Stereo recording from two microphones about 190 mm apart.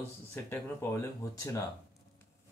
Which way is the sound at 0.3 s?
15° left (ahead or behind).